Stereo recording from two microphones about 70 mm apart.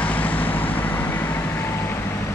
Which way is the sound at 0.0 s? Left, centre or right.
Left.